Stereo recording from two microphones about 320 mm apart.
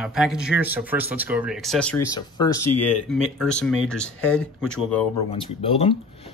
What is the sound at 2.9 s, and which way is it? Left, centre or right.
Speech, centre.